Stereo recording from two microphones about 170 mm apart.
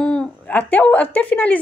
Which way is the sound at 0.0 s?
5° left (ahead or behind).